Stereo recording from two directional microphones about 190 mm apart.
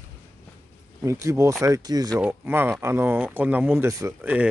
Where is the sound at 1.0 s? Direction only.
15° right (ahead or behind).